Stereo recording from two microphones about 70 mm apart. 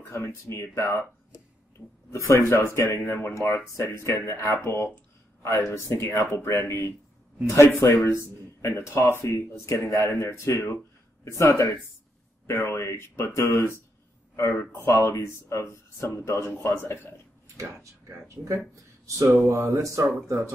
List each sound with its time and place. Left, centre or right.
0.1 s speech: left
16.1 s speech: left
18.3 s speech: right
19.8 s speech: right